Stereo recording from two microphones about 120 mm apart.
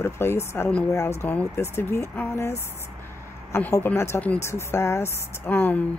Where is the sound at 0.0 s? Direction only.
20° left (ahead or behind).